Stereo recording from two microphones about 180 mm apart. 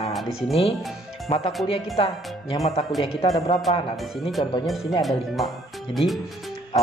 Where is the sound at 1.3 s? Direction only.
35° left (ahead or behind).